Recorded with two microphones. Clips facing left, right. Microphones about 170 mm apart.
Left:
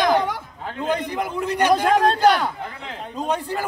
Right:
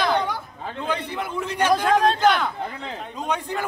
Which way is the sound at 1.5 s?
15° left (ahead or behind).